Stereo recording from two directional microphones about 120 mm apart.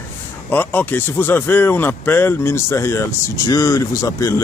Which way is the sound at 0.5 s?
15° left (ahead or behind).